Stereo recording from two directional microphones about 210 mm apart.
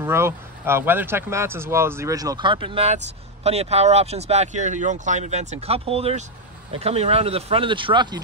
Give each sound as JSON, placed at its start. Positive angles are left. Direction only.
{"t": 0.0, "sound": "speech", "side_deg": -10}